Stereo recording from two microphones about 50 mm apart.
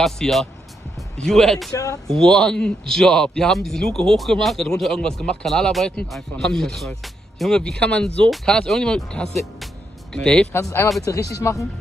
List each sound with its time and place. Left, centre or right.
0.0 s speech: centre
5.4 s speech: centre
10.5 s speech: left
11.1 s speech: left